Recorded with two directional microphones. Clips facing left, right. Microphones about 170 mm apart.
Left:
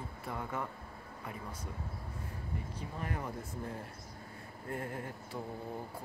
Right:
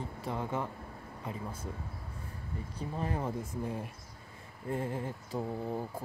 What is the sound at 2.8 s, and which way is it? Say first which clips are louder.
Speech: right 7 dB; 30° right (ahead or behind).